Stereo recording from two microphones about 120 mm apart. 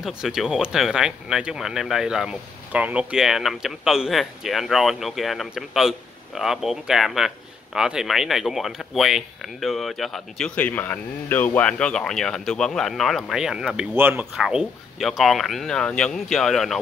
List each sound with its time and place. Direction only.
0.0 s speech: 5° right (ahead or behind)
13.9 s speech: 20° right (ahead or behind)
14.3 s speech: 5° right (ahead or behind)